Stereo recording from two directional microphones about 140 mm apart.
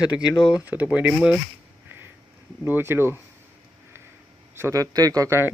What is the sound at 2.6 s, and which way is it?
Speech, 15° right (ahead or behind).